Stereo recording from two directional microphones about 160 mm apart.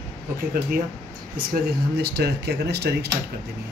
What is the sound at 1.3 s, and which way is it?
Speech, 75° right (ahead or behind).